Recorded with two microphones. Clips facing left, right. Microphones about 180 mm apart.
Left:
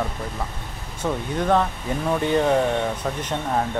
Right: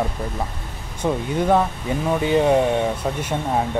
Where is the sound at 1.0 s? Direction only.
10° right (ahead or behind).